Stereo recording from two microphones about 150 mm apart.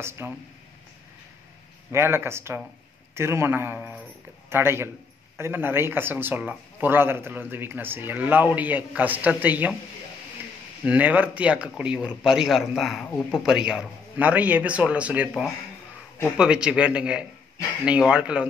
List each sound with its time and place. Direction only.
0.2 s a man's voice: 15° right (ahead or behind)
1.9 s a man's voice: 15° right (ahead or behind)
10.9 s a man's voice: 10° right (ahead or behind)